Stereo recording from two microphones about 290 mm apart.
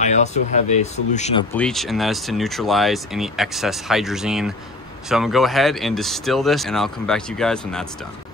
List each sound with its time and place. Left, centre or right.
0.0 s speech: left
1.5 s speech: centre